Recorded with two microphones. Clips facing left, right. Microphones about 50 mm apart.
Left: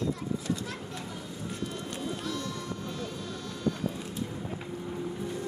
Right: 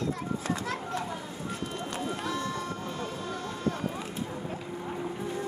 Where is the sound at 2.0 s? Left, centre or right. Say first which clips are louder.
Right 2 dB; right.